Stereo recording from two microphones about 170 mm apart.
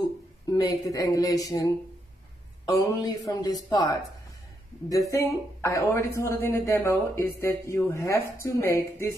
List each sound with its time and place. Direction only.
0.5 s a woman's voice: 20° left (ahead or behind)